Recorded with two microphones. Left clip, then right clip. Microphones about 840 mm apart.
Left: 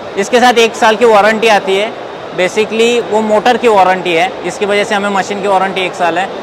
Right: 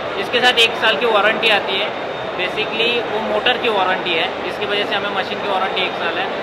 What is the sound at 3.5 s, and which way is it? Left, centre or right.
Speech, left.